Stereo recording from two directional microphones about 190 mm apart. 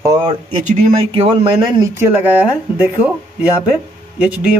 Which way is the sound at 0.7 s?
35° right (ahead or behind).